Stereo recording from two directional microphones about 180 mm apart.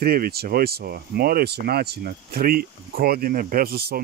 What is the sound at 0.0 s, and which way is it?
Speech, 60° right (ahead or behind).